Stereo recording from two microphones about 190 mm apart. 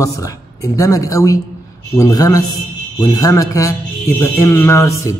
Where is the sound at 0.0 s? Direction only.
15° left (ahead or behind).